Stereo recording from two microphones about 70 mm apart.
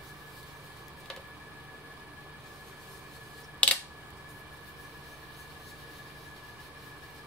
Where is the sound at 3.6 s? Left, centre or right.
Centre.